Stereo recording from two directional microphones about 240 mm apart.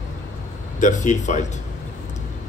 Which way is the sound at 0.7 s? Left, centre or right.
Left.